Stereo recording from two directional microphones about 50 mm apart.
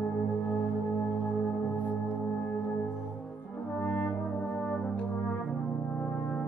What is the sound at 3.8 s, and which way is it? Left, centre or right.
Brass instrument, left.